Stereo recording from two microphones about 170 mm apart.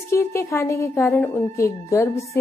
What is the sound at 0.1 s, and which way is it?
Speech, 15° left (ahead or behind).